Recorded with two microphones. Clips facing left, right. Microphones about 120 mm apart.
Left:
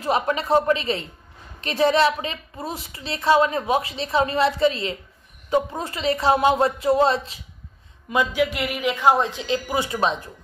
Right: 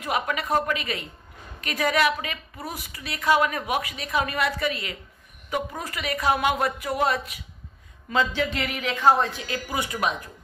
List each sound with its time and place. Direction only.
0.0 s a woman's voice: 30° left (ahead or behind)
8.1 s a woman's voice: 15° left (ahead or behind)